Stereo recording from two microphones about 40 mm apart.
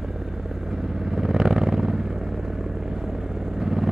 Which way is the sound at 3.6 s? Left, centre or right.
Centre.